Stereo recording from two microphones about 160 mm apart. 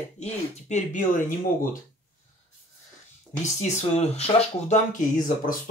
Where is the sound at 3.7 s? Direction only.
40° left (ahead or behind).